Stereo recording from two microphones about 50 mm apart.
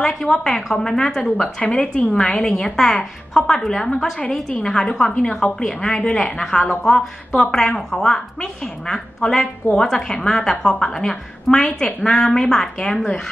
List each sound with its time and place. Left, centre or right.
0.0 s a woman's voice: centre
1.6 s a woman's voice: left
2.1 s a woman's voice: centre
7.5 s a woman's voice: centre
12.9 s a woman's voice: left